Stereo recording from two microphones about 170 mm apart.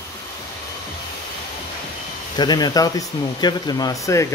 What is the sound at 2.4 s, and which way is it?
Speech, 25° left (ahead or behind).